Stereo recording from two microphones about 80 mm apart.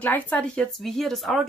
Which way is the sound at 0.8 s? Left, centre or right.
Centre.